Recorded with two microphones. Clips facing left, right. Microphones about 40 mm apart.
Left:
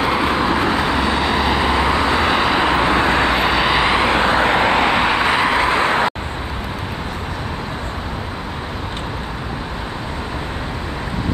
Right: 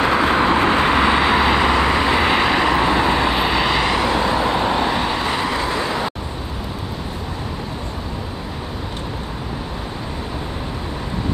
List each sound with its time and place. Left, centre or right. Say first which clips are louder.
0.0 s vehicle: right 1 dB; right
1.0 s vehicle: right 2 dB; centre
1.9 s vehicle: even; right
2.1 s vehicle: even; centre
2.7 s vehicle: left 1 dB; left
3.3 s vehicle: left 2 dB; centre
3.9 s vehicle: left 3 dB; left